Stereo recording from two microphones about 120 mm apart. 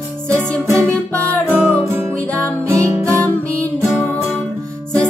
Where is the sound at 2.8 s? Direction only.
25° right (ahead or behind).